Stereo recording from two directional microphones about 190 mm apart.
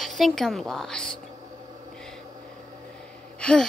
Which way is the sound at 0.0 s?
Centre (ahead or behind).